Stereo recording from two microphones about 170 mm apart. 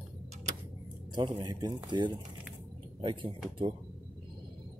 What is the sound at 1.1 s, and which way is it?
Speech, 25° right (ahead or behind).